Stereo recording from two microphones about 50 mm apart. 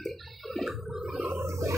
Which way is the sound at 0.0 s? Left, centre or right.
Centre.